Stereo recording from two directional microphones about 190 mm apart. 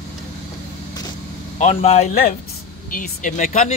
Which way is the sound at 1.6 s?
35° left (ahead or behind).